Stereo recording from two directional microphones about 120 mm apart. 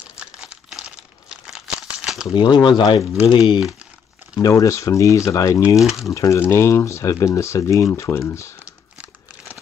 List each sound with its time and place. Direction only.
0.2 s crumpling: 10° right (ahead or behind)
2.4 s speech: 35° left (ahead or behind)
4.4 s speech: 25° left (ahead or behind)
5.8 s speech: centre (ahead or behind)
6.1 s speech: 25° left (ahead or behind)